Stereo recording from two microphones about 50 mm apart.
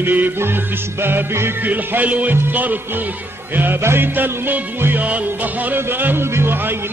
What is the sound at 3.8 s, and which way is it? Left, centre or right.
A man's voice, right.